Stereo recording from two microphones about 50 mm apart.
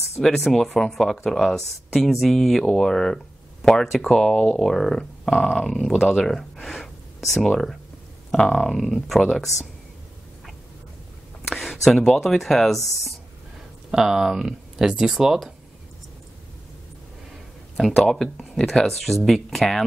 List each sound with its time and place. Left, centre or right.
0.2 s speech: centre
11.4 s a sound: centre
12.4 s speech: centre
13.8 s speech: centre
18.1 s speech: centre